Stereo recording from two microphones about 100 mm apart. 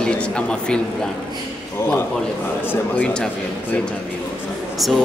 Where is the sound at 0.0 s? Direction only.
10° left (ahead or behind).